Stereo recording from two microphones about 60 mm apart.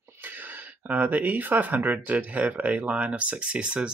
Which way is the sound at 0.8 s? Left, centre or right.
Right.